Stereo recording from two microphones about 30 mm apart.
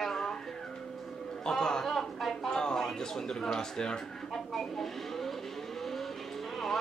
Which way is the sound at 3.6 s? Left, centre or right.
Left.